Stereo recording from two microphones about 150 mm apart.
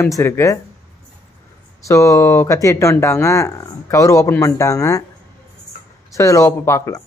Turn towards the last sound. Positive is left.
turn(degrees=20)  # may be behind; listen again after turning